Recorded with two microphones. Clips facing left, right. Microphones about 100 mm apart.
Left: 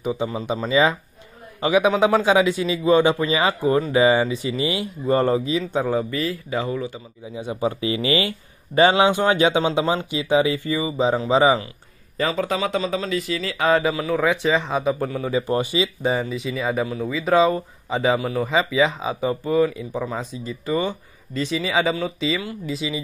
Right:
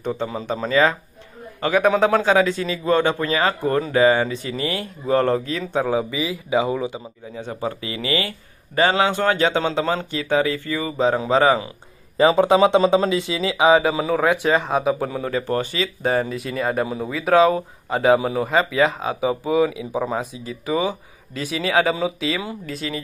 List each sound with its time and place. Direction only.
0.0 s a man's voice: 5° left (ahead or behind); by 7.0 s 20° right (ahead or behind)
7.3 s a man's voice: 10° left (ahead or behind)
7.8 s a man's voice: 25° left (ahead or behind); by 11.6 s 5° left (ahead or behind)
12.2 s speech: 25° right (ahead or behind)
14.2 s speech: 5° right (ahead or behind)
15.3 s a man's voice: 10° left (ahead or behind)
16.0 s speech: centre (ahead or behind)
18.5 s speech: centre (ahead or behind)